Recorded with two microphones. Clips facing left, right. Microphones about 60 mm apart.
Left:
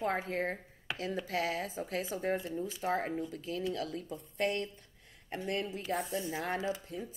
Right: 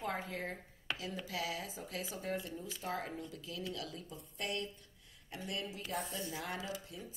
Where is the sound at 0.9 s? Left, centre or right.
Centre.